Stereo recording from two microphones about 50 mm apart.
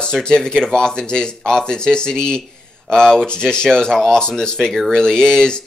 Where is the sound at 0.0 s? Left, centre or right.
Centre.